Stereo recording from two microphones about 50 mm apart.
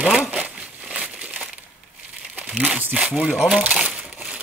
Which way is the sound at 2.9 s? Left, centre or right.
Right.